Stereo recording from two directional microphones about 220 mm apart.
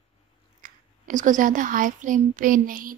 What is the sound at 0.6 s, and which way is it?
A child's voice, 35° right (ahead or behind).